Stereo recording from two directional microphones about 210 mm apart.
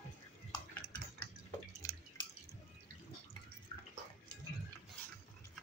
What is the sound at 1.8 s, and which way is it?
Drip, 15° left (ahead or behind).